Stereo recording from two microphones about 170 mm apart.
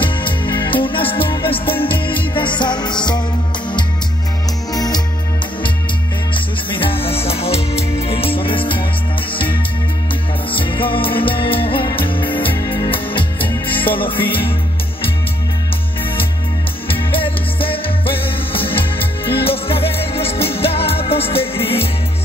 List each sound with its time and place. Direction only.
0.0 s music: 30° left (ahead or behind)
4.7 s music: 20° left (ahead or behind)
6.3 s music: 30° left (ahead or behind)
16.9 s music: 30° left (ahead or behind)